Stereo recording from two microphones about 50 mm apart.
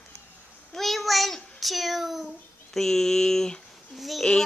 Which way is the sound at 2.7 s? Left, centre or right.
Centre.